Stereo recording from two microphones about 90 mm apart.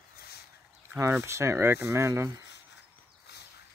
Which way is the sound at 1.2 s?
30° right (ahead or behind).